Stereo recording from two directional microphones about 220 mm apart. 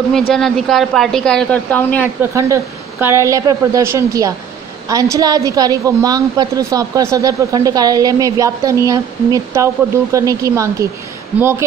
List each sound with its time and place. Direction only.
0.3 s a woman's voice: centre (ahead or behind)
2.3 s a woman's voice: 15° right (ahead or behind)